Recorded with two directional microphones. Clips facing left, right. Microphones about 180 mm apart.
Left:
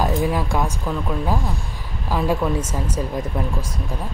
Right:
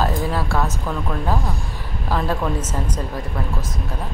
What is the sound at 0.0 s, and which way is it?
A woman's voice, 15° left (ahead or behind).